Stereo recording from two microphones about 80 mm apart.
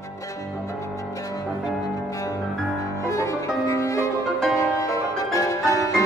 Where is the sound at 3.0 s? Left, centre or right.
Left.